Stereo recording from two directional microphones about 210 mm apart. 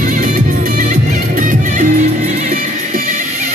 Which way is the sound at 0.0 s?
40° right (ahead or behind).